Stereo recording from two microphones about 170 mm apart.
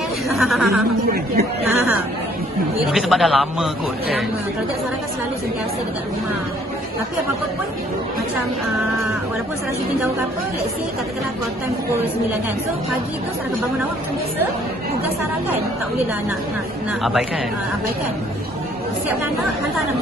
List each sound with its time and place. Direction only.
0.3 s a man's voice: centre (ahead or behind)
1.1 s a man's voice: 60° right (ahead or behind)
2.9 s a man's voice: centre (ahead or behind)